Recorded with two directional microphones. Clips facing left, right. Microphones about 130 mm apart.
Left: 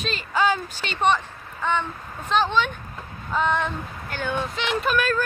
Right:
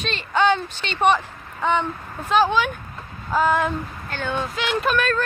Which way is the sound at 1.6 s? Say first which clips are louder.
Right 4 dB; 15° right (ahead or behind).